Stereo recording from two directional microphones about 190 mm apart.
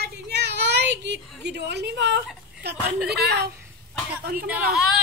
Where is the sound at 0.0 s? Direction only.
60° right (ahead or behind).